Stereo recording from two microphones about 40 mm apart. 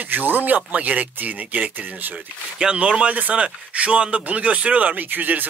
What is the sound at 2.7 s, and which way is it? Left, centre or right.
A man's voice, right.